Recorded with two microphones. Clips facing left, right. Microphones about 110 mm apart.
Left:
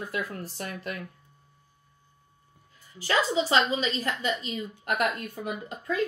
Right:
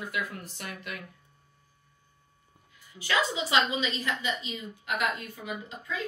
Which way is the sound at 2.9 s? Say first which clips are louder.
Left 4 dB; 40° left (ahead or behind).